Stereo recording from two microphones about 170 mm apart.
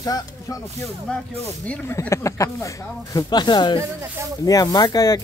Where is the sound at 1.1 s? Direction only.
5° left (ahead or behind).